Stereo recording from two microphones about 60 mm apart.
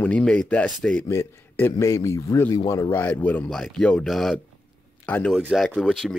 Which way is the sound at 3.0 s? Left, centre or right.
Left.